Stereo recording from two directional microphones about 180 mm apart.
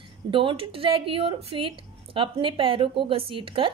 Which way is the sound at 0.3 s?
30° right (ahead or behind).